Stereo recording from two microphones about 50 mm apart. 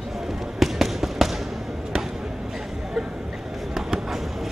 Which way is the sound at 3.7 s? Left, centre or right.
Centre.